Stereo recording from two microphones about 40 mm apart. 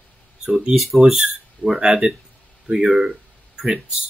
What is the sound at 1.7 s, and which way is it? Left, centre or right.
Speech, right.